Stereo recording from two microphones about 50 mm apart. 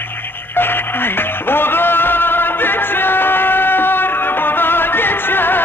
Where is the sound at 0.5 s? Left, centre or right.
Left.